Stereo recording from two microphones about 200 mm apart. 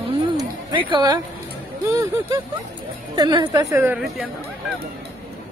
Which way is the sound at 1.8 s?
15° right (ahead or behind).